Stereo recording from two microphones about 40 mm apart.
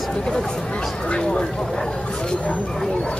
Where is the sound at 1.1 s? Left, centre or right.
Left.